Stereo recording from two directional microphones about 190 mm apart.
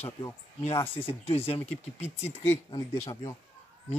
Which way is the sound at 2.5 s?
20° left (ahead or behind).